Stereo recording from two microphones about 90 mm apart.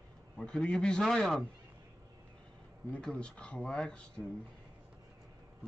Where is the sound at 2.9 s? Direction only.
10° left (ahead or behind).